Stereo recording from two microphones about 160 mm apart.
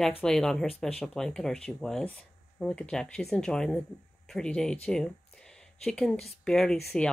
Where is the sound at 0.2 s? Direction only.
5° left (ahead or behind).